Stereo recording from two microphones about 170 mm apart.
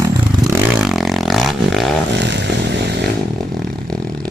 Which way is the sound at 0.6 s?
Centre (ahead or behind).